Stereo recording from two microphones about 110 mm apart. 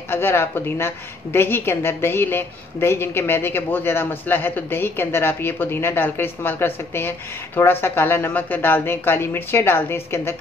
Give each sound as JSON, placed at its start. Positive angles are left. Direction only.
{"t": 0.1, "sound": "a woman's voice", "side_deg": 20}